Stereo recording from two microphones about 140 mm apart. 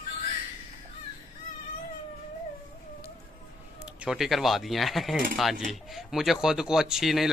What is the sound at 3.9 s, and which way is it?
A man's voice, 5° right (ahead or behind).